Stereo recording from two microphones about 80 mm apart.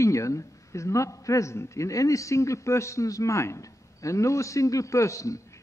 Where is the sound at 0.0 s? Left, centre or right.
Left.